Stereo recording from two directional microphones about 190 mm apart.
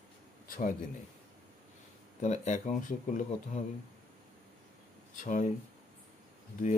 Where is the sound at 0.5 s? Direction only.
45° left (ahead or behind).